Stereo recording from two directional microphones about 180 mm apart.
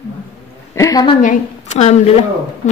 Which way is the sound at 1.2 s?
40° left (ahead or behind).